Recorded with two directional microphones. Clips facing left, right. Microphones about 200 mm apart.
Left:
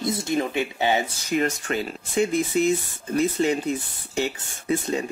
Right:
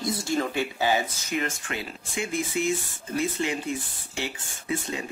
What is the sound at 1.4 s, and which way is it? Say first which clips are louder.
Speech: left 7 dB; 40° left (ahead or behind).